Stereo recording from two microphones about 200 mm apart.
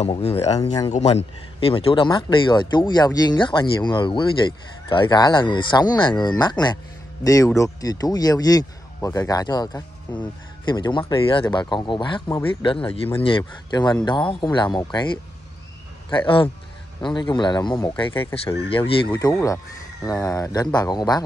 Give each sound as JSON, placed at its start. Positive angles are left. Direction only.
{"t": 0.0, "sound": "speech", "side_deg": 30}
{"t": 0.6, "sound": "speech", "side_deg": 20}
{"t": 0.9, "sound": "speech", "side_deg": 30}
{"t": 19.0, "sound": "speech", "side_deg": 15}